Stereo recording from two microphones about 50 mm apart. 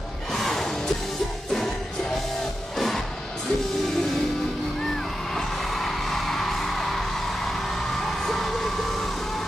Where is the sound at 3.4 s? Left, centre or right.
Centre.